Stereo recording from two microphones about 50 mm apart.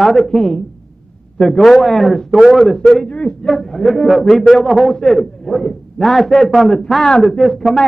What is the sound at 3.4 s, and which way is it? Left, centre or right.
A man's voice, centre.